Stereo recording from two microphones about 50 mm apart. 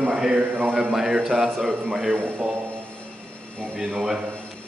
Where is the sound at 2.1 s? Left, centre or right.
Right.